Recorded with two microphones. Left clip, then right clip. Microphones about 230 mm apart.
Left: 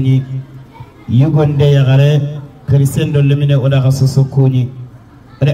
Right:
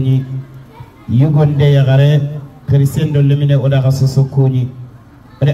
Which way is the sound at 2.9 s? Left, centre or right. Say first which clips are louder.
Left 1 dB; centre.